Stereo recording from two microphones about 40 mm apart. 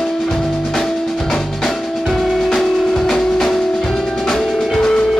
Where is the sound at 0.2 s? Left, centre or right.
Centre.